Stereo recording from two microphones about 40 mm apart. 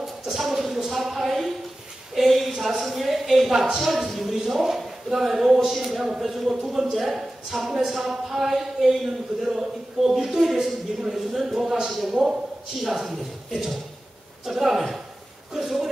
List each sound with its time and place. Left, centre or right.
0.0 s a sound: centre
2.6 s speech: centre
4.1 s speech: centre
5.8 s speech: centre
12.1 s a man's voice: centre
12.8 s speech: centre